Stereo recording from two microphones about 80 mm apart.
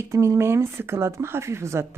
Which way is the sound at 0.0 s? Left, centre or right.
Right.